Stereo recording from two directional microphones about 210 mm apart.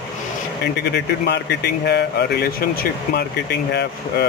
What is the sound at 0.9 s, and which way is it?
Speech, 55° left (ahead or behind).